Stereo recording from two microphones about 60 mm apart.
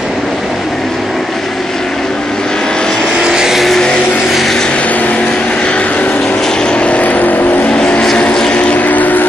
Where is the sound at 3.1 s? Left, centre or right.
Centre.